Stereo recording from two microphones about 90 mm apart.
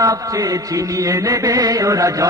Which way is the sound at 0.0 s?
40° right (ahead or behind).